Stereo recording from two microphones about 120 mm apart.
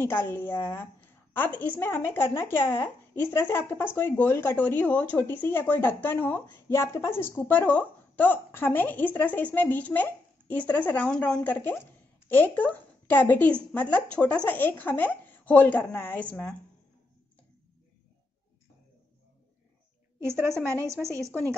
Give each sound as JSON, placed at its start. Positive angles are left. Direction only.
{"t": 0.0, "sound": "a woman's voice", "side_deg": 20}
{"t": 20.2, "sound": "a woman's voice", "side_deg": -20}